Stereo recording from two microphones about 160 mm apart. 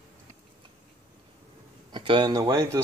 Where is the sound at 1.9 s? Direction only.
30° right (ahead or behind).